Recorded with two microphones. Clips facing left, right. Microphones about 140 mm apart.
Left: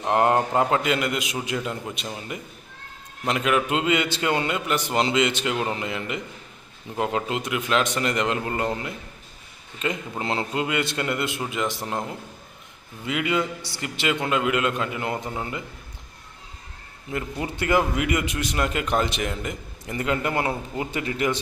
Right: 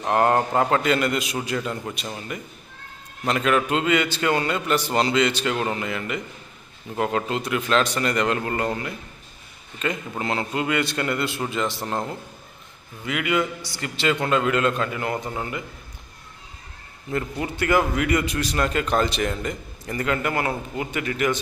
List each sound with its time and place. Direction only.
0.0 s a man's voice: 20° left (ahead or behind)
13.0 s a man's voice: 25° left (ahead or behind)
17.1 s a man's voice: 25° left (ahead or behind)